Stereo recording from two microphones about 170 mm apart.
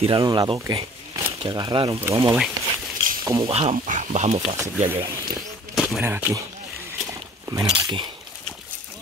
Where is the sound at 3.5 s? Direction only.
35° right (ahead or behind).